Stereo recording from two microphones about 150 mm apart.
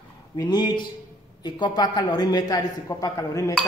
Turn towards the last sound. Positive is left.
turn(degrees=20)  # may be behind; listen again after turning